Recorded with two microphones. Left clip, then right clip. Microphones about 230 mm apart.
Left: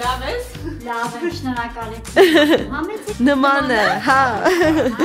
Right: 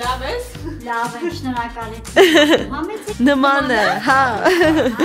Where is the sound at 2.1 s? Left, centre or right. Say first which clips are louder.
Right 1 dB; centre.